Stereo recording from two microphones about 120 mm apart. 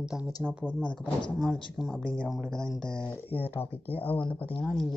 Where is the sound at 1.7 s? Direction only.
5° left (ahead or behind).